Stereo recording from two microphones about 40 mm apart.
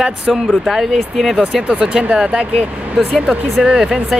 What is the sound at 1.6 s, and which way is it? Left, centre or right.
Speech, right.